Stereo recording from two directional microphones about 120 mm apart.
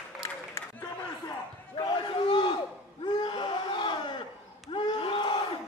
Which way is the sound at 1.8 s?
40° left (ahead or behind).